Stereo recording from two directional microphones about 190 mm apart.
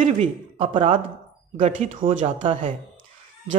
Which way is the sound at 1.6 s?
40° right (ahead or behind).